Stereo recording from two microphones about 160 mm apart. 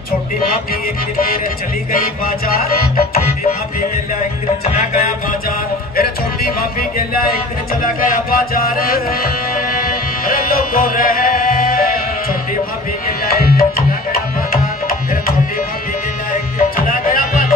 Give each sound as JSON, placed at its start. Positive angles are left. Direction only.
{"t": 1.1, "sound": "music", "side_deg": 65}
{"t": 4.2, "sound": "music", "side_deg": 50}
{"t": 7.8, "sound": "music", "side_deg": 60}
{"t": 13.3, "sound": "tabla", "side_deg": 70}
{"t": 16.5, "sound": "music", "side_deg": 60}